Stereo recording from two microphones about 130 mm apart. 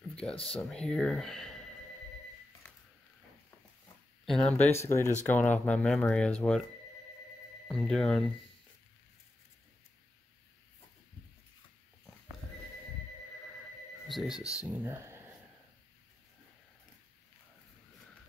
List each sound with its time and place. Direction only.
0.1 s a sound: 5° left (ahead or behind)
0.5 s speech: 5° left (ahead or behind)
4.3 s speech: 5° left (ahead or behind)
4.6 s speech: 20° left (ahead or behind)
7.7 s speech: 5° left (ahead or behind)
14.0 s speech: centre (ahead or behind)
14.4 s speech: 25° left (ahead or behind)
14.8 s speech: 15° right (ahead or behind)